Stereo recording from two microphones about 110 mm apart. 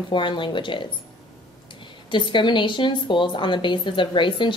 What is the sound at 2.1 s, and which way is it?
A woman's voice, 45° left (ahead or behind).